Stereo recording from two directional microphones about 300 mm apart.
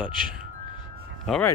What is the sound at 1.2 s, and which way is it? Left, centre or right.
Speech, centre.